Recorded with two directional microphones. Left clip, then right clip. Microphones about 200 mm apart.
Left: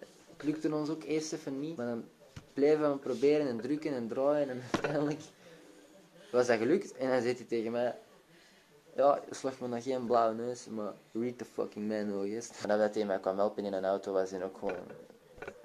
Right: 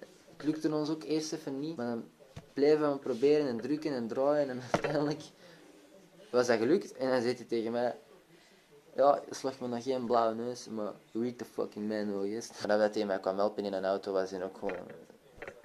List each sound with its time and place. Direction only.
0.5 s speech: 10° right (ahead or behind)
6.3 s speech: 5° right (ahead or behind)
8.9 s speech: 10° right (ahead or behind)